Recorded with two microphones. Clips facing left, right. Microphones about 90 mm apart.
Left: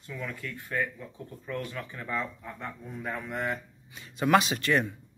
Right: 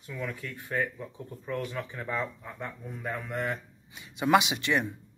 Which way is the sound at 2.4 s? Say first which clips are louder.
Even; centre (ahead or behind).